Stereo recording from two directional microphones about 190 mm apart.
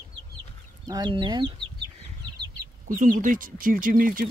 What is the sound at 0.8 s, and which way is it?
Speech, 20° right (ahead or behind).